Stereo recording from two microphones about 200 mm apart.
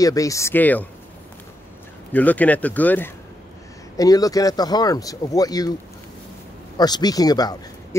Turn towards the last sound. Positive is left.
turn(degrees=20)  # may be behind; listen again after turning